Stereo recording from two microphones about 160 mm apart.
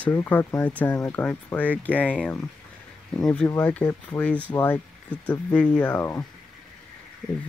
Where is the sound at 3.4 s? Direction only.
10° left (ahead or behind).